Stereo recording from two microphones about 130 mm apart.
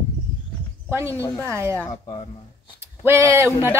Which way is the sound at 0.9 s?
20° right (ahead or behind).